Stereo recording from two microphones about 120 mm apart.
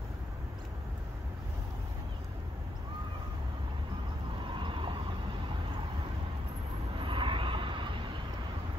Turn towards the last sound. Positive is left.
turn(degrees=-45)  # may be behind; listen again after turning